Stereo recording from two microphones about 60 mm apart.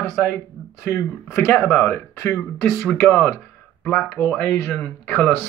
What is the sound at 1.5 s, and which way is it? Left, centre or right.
Speech, left.